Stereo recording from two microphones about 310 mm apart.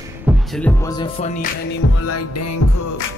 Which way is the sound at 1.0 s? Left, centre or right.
Left.